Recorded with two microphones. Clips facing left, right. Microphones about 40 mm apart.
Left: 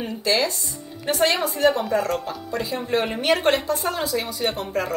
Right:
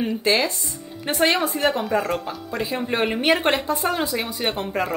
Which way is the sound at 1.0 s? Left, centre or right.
Right.